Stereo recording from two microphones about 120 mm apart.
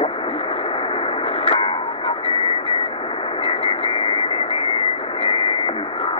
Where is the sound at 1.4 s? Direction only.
50° left (ahead or behind).